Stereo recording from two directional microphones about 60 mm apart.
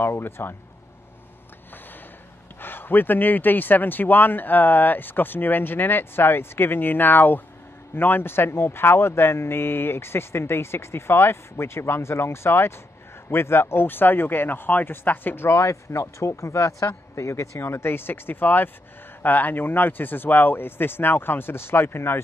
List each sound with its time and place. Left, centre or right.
0.0 s speech: left
2.6 s speech: left